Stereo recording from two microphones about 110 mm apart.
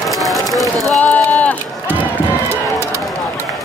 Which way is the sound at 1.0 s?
15° left (ahead or behind).